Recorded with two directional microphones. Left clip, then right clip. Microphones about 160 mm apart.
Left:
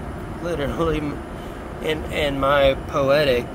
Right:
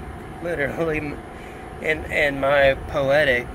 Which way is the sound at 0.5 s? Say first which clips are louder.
Even; 20° left (ahead or behind).